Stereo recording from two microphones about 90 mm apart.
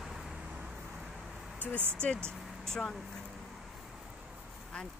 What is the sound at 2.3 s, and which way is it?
Speech, 5° left (ahead or behind).